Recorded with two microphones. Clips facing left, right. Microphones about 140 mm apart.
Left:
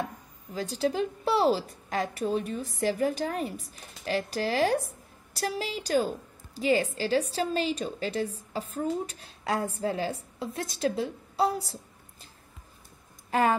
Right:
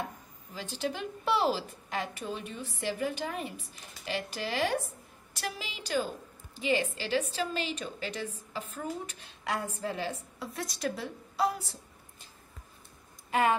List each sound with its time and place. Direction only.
0.7 s a woman's voice: 35° left (ahead or behind)
13.3 s speech: 35° left (ahead or behind)